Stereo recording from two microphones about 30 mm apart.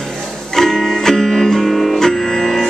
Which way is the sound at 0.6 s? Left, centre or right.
Centre.